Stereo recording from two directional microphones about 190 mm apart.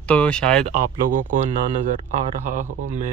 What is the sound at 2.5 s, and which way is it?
Speech, 40° right (ahead or behind).